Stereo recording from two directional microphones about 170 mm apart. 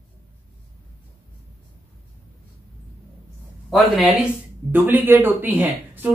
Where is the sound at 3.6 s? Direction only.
Centre (ahead or behind).